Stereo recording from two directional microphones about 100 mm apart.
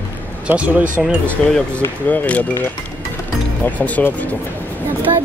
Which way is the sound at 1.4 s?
5° left (ahead or behind).